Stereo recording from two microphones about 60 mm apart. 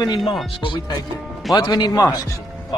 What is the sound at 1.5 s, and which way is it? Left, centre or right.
Speech, left.